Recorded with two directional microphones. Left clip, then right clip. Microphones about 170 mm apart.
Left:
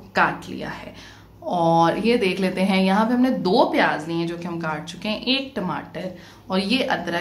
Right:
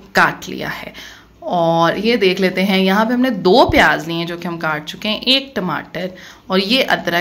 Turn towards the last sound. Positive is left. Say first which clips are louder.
# right 7 dB
turn(degrees=-25)  # may be behind; listen again after turning